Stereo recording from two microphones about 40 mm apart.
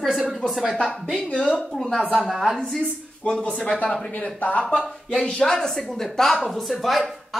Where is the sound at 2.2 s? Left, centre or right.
Centre.